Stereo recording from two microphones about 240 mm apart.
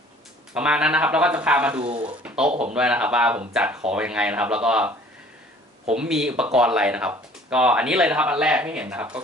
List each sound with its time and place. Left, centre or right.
0.6 s speech: centre
1.8 s speech: right
2.0 s speech: centre
5.9 s speech: centre